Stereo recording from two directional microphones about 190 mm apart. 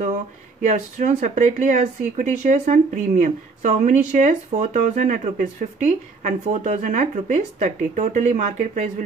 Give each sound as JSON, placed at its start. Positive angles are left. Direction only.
{"t": 0.6, "sound": "speech", "side_deg": -40}